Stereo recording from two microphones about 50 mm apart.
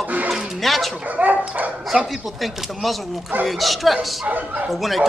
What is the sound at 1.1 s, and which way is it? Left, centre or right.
Speech, right.